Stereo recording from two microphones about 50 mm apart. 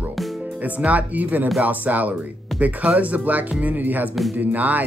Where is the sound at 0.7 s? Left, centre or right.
Right.